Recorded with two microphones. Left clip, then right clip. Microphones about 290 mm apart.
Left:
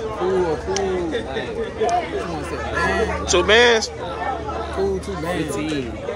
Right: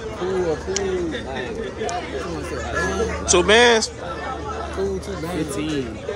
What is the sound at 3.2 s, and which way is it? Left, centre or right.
Speech, centre.